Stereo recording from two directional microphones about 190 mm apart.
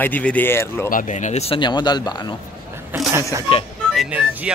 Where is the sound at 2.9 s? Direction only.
15° right (ahead or behind).